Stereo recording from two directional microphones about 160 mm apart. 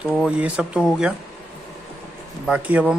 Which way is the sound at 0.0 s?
5° right (ahead or behind).